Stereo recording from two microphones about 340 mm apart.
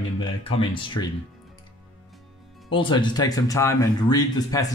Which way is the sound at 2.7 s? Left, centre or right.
Centre.